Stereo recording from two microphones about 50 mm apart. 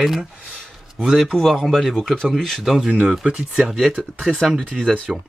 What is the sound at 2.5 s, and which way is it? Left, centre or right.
Speech, centre.